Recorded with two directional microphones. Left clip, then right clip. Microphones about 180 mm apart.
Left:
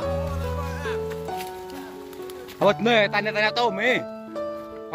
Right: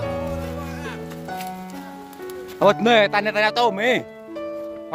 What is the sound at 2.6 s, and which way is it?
Speech, 25° right (ahead or behind).